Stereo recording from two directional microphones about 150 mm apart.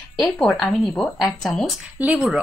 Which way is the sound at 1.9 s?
10° right (ahead or behind).